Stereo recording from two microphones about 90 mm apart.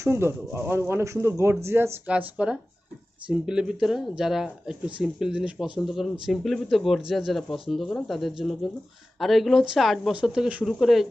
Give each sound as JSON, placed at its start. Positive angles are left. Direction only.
{"t": 0.0, "sound": "speech", "side_deg": -30}
{"t": 2.0, "sound": "a woman's voice", "side_deg": -15}